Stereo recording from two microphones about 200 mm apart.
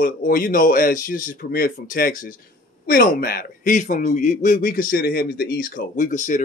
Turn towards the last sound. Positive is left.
turn(degrees=40)  # may be behind; listen again after turning